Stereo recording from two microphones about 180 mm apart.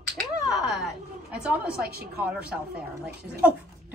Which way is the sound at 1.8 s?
60° right (ahead or behind).